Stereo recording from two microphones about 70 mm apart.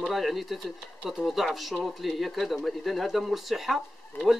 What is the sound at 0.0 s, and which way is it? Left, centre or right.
Speech, centre.